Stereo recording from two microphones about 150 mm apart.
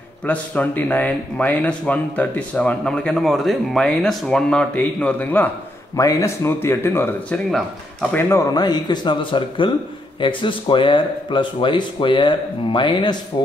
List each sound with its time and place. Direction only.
0.2 s speech: 10° left (ahead or behind)
5.9 s speech: 20° left (ahead or behind)
7.5 s speech: centre (ahead or behind)
8.3 s a man's voice: 25° left (ahead or behind)